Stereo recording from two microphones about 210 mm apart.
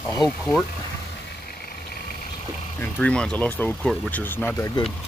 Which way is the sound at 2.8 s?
5° left (ahead or behind).